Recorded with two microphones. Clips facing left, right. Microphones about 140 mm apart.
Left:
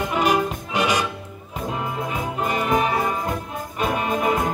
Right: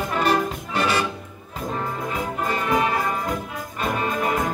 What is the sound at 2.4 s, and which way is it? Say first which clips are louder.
Music: left 1 dB; 15° left (ahead or behind).